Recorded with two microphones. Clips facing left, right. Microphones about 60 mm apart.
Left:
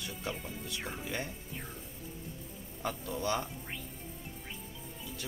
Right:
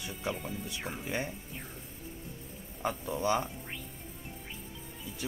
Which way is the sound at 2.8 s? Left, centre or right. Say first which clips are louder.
Right 3 dB; right.